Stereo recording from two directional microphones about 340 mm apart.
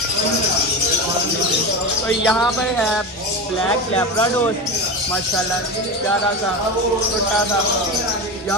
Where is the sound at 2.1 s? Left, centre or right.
Centre.